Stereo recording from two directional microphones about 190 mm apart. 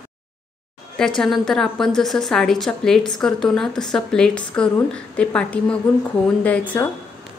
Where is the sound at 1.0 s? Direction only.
Centre (ahead or behind).